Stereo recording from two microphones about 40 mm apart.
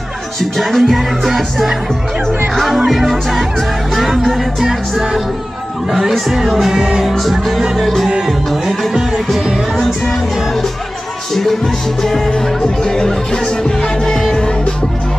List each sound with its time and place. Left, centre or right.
0.4 s music: centre
2.9 s music: centre
6.7 s music: centre
7.1 s music: centre
8.3 s music: centre
12.0 s music: centre